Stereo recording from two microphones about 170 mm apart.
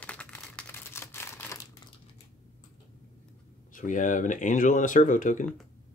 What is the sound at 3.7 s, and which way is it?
Speech, 50° left (ahead or behind).